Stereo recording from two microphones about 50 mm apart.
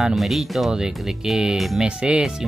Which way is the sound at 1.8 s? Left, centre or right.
Centre.